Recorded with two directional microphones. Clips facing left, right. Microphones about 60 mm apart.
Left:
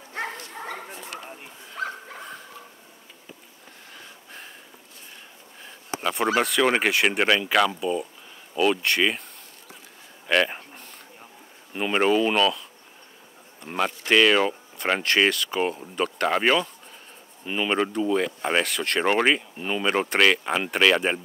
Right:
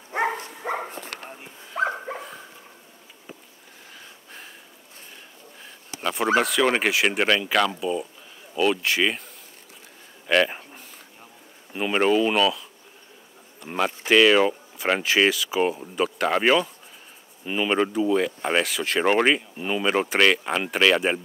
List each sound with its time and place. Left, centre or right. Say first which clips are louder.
0.1 s bow-wow: right 7 dB; right
0.9 s dog: right 1 dB; right
1.3 s dog: right 1 dB; centre
1.8 s dog: right 7 dB; right
3.9 s wheeze: left 1 dB; centre
5.9 s speech: right 1 dB; centre
10.2 s a sound: right 1 dB; centre
11.7 s speech: right 1 dB; centre
13.7 s speech: right 1 dB; centre